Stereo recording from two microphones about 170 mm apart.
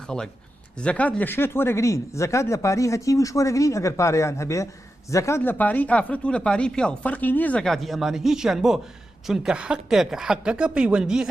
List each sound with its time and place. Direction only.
0.7 s speech: 5° left (ahead or behind)